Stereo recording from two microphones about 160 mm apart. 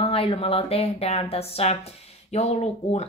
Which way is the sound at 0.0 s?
35° left (ahead or behind).